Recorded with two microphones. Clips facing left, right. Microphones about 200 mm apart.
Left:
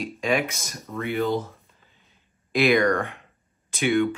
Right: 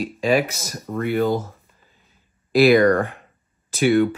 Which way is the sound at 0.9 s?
45° right (ahead or behind).